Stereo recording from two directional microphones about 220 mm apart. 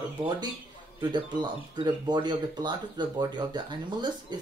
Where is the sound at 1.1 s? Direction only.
20° right (ahead or behind).